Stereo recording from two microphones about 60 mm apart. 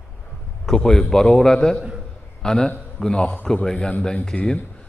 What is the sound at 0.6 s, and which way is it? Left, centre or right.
A man's voice, centre.